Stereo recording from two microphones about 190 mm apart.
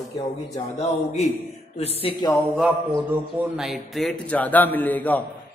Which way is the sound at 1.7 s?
30° left (ahead or behind).